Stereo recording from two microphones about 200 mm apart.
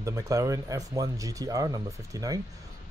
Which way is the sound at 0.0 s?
15° right (ahead or behind).